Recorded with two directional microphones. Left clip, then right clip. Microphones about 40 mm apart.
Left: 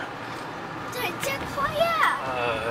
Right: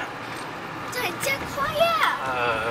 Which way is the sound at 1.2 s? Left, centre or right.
Centre.